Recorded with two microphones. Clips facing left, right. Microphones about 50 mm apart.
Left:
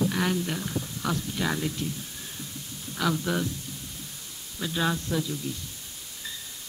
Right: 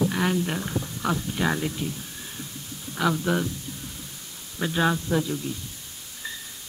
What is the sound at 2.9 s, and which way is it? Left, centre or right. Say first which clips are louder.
Speech: right 3 dB; centre.